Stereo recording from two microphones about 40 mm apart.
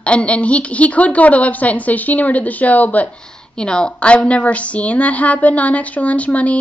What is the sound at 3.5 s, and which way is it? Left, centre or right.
Speech, centre.